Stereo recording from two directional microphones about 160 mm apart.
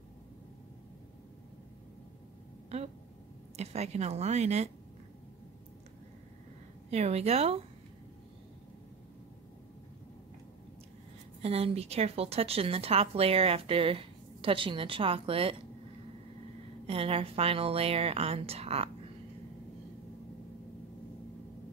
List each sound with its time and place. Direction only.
3.5 s speech: 45° right (ahead or behind)
6.9 s speech: 40° right (ahead or behind)
11.4 s speech: 40° right (ahead or behind)
16.8 s speech: 35° right (ahead or behind)